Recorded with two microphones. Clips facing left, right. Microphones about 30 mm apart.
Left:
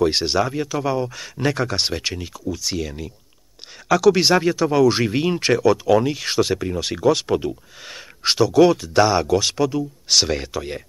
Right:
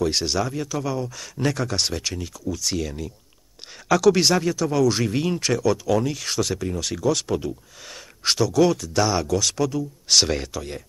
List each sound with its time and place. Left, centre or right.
0.0 s speech: left
10.0 s speech: centre
10.5 s speech: left